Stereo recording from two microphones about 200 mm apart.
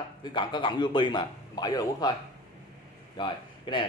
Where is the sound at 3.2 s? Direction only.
25° left (ahead or behind).